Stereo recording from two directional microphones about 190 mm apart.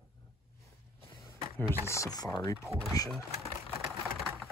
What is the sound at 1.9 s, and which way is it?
Speech, 20° left (ahead or behind).